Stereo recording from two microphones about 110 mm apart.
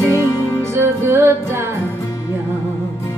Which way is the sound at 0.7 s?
20° right (ahead or behind).